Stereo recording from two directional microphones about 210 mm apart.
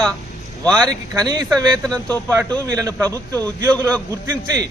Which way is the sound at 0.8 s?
20° right (ahead or behind).